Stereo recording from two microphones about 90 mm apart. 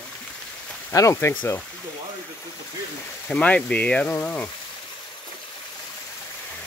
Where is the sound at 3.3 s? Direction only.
15° left (ahead or behind).